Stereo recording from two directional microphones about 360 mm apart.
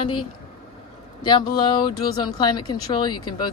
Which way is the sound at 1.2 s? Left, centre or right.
Centre.